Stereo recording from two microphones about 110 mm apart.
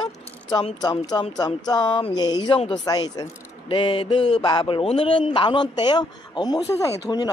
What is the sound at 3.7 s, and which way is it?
A man's voice, 55° left (ahead or behind).